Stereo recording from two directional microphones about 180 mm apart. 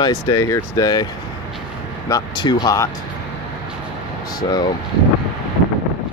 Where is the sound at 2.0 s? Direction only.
20° left (ahead or behind).